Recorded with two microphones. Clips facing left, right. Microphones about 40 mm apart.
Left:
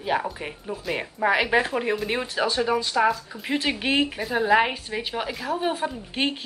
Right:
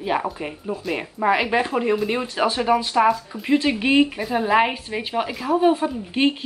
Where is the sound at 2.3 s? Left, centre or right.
Right.